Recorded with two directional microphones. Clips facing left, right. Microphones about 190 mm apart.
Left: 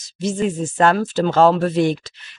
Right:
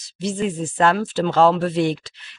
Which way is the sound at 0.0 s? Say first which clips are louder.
Left 2 dB; 45° left (ahead or behind).